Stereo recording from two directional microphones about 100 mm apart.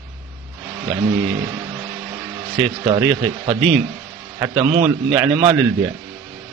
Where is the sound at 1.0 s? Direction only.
35° right (ahead or behind).